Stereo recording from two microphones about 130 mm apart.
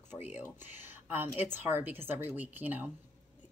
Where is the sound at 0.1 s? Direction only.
15° right (ahead or behind).